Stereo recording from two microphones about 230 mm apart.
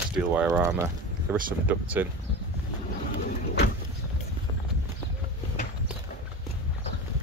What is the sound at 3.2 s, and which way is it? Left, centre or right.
Vehicle, left.